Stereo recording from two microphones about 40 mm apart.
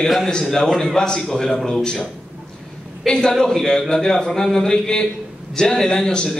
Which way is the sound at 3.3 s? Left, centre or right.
Centre.